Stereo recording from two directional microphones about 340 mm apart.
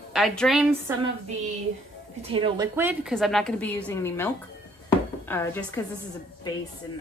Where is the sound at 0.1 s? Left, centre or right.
Centre.